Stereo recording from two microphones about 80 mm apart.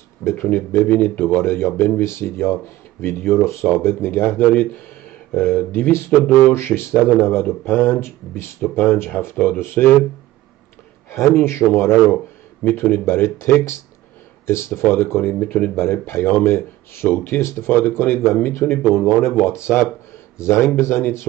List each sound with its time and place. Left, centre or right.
0.2 s speech: left
11.1 s speech: left
15.4 s speech: centre
15.7 s speech: left